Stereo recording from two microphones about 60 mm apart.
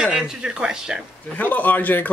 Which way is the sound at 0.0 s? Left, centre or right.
Centre.